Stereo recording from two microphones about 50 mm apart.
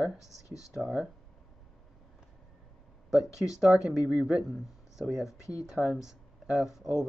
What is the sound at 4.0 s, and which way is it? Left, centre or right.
Speech, right.